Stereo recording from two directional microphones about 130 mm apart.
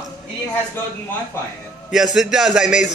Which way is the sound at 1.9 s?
5° right (ahead or behind).